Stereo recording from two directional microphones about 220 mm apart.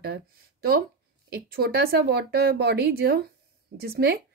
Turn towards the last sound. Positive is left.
turn(degrees=-45)  # may be behind; listen again after turning